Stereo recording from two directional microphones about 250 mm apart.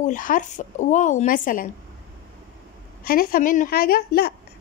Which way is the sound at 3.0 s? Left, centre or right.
Left.